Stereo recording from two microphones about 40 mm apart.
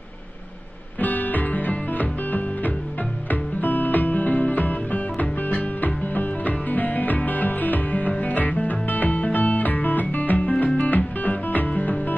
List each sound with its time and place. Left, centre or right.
0.9 s music: left